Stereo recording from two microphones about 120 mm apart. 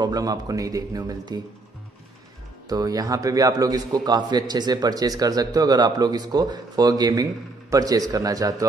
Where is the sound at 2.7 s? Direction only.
30° right (ahead or behind).